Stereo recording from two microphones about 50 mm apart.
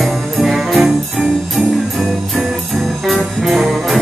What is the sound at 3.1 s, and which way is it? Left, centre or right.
Music, centre.